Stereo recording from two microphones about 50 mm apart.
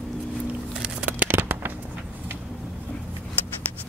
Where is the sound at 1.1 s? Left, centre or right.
Right.